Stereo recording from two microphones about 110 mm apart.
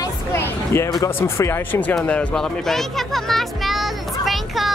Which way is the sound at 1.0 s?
25° left (ahead or behind).